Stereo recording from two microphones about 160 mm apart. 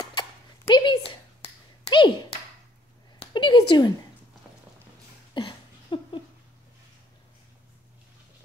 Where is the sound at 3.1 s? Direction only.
30° left (ahead or behind).